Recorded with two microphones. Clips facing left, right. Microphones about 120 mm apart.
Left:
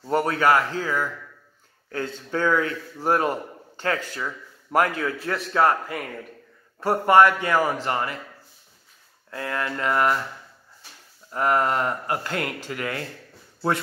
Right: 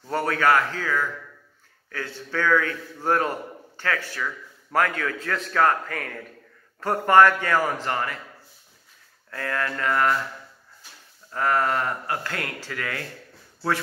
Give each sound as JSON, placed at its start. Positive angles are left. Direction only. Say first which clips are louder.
{"t": 0.0, "sound": "a man's voice", "louder": "left 2 dB", "side_deg": 20}
{"t": 9.3, "sound": "a man's voice", "louder": "even", "side_deg": 20}
{"t": 11.3, "sound": "a man's voice", "louder": "left 1 dB", "side_deg": 20}